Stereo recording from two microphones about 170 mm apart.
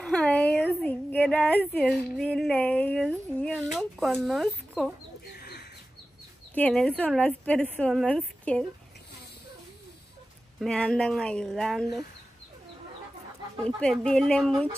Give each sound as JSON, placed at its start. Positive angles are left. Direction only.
{"t": 0.0, "sound": "speech", "side_deg": 5}
{"t": 5.4, "sound": "bird", "side_deg": 70}
{"t": 6.5, "sound": "a woman's voice", "side_deg": 5}
{"t": 10.6, "sound": "speech", "side_deg": 5}
{"t": 13.6, "sound": "speech", "side_deg": 5}